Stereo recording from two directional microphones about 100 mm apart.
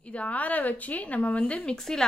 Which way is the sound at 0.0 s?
15° left (ahead or behind).